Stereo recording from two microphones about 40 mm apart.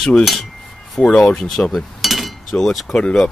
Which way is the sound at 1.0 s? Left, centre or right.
Left.